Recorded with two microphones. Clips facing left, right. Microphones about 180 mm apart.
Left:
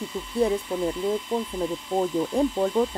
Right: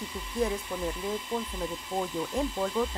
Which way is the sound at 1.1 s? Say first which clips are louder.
Left 6 dB; 40° left (ahead or behind).